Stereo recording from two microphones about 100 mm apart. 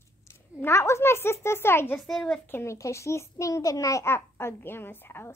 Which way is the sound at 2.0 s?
5° left (ahead or behind).